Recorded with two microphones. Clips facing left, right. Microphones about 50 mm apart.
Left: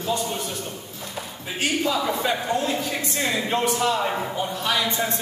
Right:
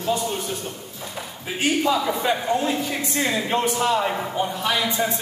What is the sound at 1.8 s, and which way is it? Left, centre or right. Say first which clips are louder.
A man's voice: right 2 dB; centre.